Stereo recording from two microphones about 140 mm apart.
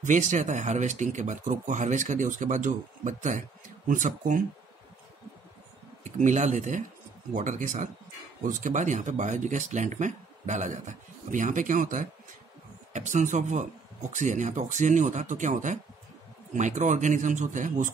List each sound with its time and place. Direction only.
0.0 s speech: 60° right (ahead or behind)
6.0 s speech: 60° right (ahead or behind)